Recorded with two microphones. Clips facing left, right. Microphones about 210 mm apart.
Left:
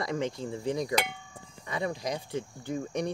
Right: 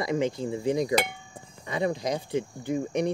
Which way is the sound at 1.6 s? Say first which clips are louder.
Right 5 dB; 25° right (ahead or behind).